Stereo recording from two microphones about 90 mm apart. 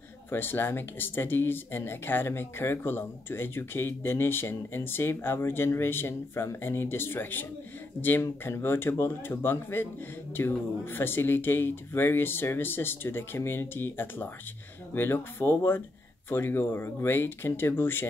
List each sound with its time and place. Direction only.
0.3 s speech: 25° left (ahead or behind)